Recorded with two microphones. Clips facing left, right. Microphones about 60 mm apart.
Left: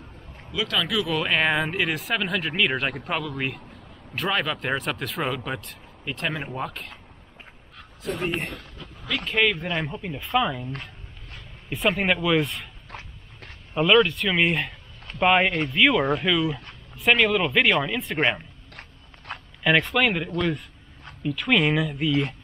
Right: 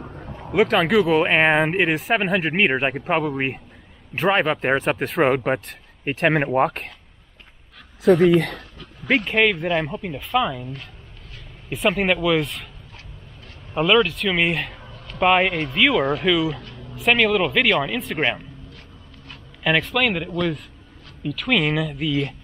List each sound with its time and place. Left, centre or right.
0.5 s speech: right
2.1 s speech: right
3.3 s speech: right
8.0 s speech: right
9.2 s speech: centre
11.7 s speech: centre
13.7 s speech: centre
18.7 s biting: left
19.6 s speech: centre